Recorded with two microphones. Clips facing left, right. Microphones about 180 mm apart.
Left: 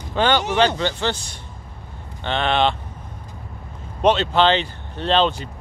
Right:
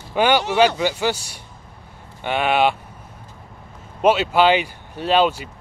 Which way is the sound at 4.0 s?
10° right (ahead or behind).